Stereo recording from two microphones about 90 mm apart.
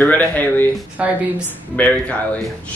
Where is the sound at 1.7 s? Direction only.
15° left (ahead or behind).